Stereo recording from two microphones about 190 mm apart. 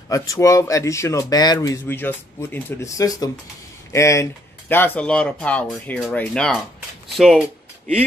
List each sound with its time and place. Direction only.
0.1 s speech: 15° left (ahead or behind); by 7.4 s centre (ahead or behind)